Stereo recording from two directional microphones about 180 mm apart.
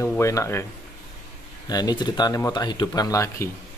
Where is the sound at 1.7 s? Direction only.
20° left (ahead or behind).